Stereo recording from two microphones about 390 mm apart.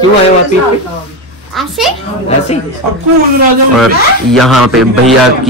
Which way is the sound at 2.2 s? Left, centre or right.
Centre.